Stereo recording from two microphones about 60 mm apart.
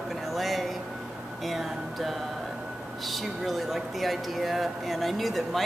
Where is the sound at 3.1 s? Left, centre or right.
Centre.